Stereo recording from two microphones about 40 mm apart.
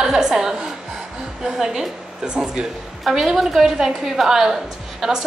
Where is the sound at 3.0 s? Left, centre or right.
Centre.